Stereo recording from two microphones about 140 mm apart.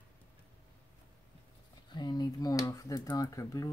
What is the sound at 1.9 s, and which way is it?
Speech, 30° left (ahead or behind).